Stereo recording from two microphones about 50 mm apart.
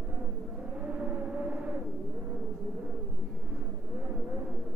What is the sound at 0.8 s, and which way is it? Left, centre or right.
Vehicle, right.